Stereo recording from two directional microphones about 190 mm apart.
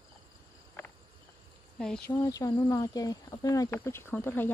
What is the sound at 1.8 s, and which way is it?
Speech, 5° left (ahead or behind).